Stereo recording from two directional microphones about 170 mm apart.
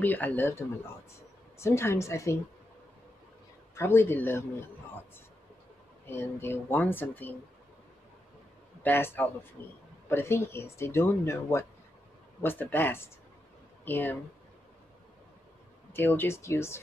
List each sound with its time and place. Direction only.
0.0 s speech: 10° left (ahead or behind)
3.7 s a man's voice: 15° left (ahead or behind)
6.0 s speech: 15° left (ahead or behind)
8.8 s speech: 10° left (ahead or behind)
15.9 s speech: 10° left (ahead or behind)